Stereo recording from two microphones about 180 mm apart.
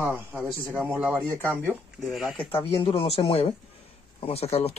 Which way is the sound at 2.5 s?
30° left (ahead or behind).